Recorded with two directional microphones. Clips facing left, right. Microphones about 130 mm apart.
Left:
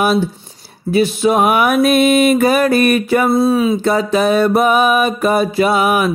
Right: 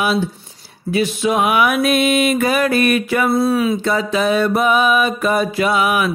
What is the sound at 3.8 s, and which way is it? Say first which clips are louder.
Music: left 4 dB; 40° left (ahead or behind).